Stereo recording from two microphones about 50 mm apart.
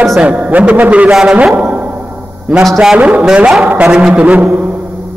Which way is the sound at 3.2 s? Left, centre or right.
Centre.